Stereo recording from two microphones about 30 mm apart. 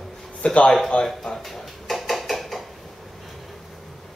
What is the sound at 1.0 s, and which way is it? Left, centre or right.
Speech, centre.